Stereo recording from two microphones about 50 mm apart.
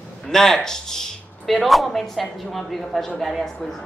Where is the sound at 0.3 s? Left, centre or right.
Centre.